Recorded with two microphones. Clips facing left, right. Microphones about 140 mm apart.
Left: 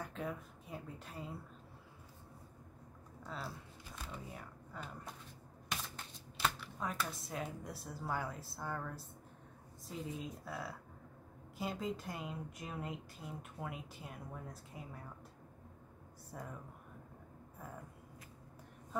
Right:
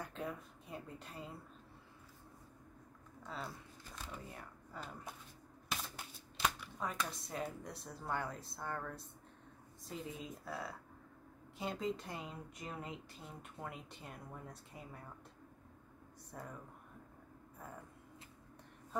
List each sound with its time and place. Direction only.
0.0 s speech: centre (ahead or behind)
3.3 s speech: 5° left (ahead or behind)
6.3 s speech: centre (ahead or behind)
16.3 s speech: centre (ahead or behind)